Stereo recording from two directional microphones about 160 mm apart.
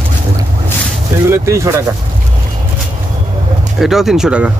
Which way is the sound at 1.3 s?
15° right (ahead or behind).